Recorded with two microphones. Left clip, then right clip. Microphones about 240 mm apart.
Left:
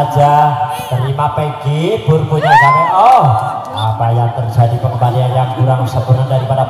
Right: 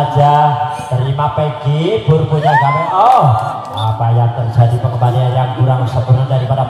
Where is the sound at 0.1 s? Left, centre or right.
Left.